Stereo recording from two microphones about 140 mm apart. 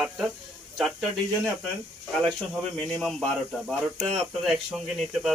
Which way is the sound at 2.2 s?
5° left (ahead or behind).